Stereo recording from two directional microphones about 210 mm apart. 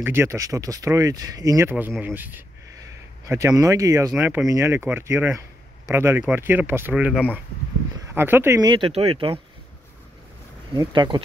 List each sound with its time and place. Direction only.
0.0 s speech: 10° right (ahead or behind)
10.7 s speech: 20° right (ahead or behind)